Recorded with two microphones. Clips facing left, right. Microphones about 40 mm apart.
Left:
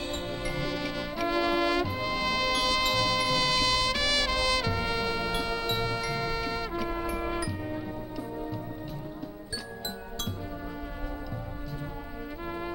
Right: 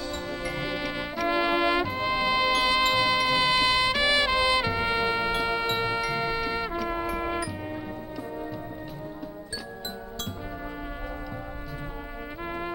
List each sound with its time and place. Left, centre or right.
0.0 s music: left
0.6 s music: right
1.2 s trumpet: right
2.0 s music: right
12.4 s music: right